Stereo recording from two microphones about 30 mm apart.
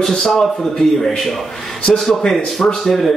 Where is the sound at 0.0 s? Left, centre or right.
Centre.